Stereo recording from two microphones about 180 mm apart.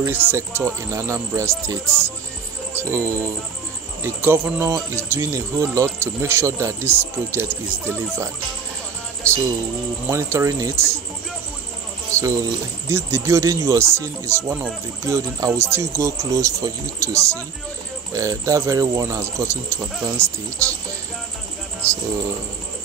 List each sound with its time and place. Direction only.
0.0 s speech: 15° right (ahead or behind)
9.3 s music: 15° right (ahead or behind)
10.0 s speech: 15° right (ahead or behind)
12.1 s speech: 15° right (ahead or behind)